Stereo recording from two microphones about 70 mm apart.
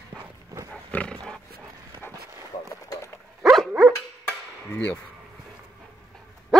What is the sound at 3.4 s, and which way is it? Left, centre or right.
Dog, centre.